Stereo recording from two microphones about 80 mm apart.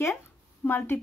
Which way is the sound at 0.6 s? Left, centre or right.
Left.